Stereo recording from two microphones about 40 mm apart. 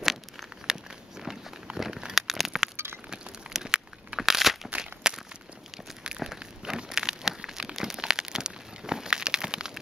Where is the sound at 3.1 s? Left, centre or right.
Centre.